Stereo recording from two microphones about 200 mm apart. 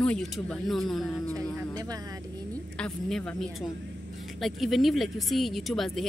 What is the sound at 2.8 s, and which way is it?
Speech, 5° left (ahead or behind).